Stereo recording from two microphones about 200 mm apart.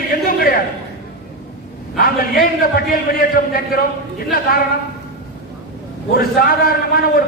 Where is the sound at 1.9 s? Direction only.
45° left (ahead or behind).